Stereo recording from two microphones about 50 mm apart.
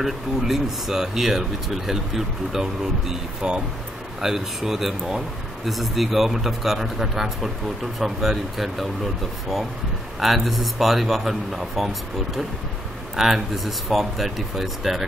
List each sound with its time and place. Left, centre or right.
0.0 s speech: centre
13.1 s speech: centre